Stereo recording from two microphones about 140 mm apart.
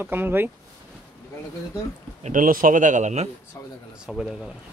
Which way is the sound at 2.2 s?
80° right.